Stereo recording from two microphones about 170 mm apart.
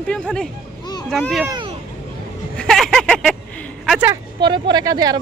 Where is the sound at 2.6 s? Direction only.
5° left (ahead or behind).